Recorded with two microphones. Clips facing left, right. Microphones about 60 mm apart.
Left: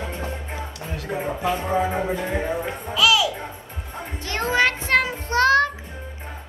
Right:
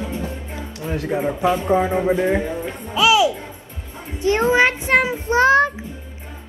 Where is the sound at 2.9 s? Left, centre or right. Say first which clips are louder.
Right 4 dB; right.